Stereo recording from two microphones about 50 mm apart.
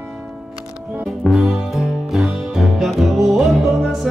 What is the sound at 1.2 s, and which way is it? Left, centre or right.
Music, centre.